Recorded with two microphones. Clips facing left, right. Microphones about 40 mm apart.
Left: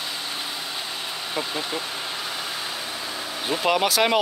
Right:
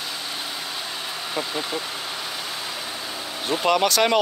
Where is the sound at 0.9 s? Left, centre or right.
Centre.